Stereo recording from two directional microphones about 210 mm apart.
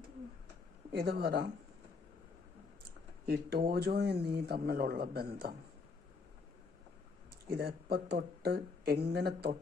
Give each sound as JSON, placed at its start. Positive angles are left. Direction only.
{"t": 0.9, "sound": "speech", "side_deg": -45}
{"t": 3.3, "sound": "speech", "side_deg": -50}
{"t": 7.5, "sound": "speech", "side_deg": -45}